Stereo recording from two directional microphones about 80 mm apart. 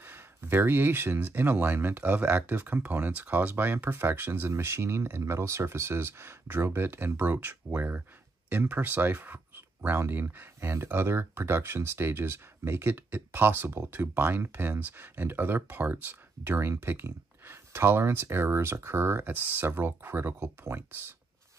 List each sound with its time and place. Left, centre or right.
0.0 s speech: right